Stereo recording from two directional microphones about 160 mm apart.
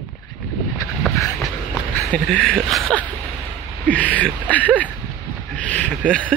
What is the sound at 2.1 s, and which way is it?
Speech, 5° left (ahead or behind).